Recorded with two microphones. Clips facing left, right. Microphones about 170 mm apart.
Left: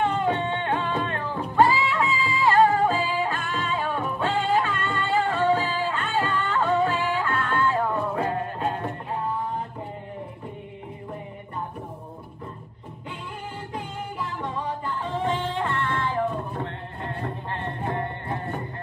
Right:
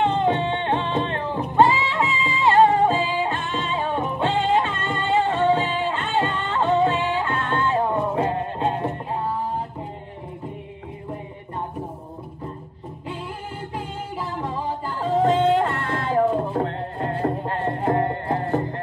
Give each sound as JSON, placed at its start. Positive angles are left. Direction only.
{"t": 0.0, "sound": "music", "side_deg": -25}
{"t": 13.7, "sound": "music", "side_deg": -35}